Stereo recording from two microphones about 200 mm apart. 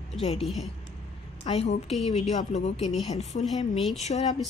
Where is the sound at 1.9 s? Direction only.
Centre (ahead or behind).